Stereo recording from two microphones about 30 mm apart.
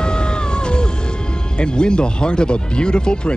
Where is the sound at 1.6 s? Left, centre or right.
Left.